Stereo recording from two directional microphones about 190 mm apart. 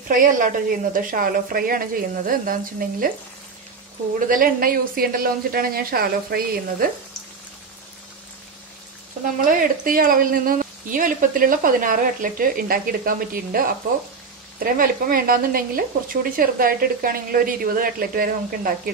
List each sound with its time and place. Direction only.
0.1 s a woman's voice: 45° right (ahead or behind)
4.3 s a woman's voice: 50° right (ahead or behind)
9.4 s a woman's voice: 45° right (ahead or behind)